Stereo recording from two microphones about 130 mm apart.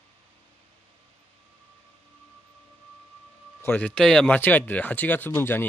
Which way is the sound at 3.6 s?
10° left (ahead or behind).